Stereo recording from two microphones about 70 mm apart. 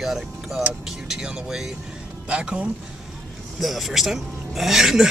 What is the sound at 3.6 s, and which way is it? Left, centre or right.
Speech, centre.